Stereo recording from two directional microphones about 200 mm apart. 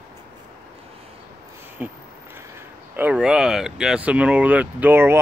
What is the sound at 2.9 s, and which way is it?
Speech, 5° right (ahead or behind).